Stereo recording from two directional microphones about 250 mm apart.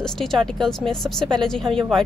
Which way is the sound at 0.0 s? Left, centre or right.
Centre.